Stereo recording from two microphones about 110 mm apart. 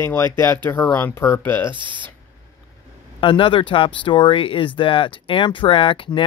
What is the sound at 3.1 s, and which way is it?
Speech, 50° left (ahead or behind).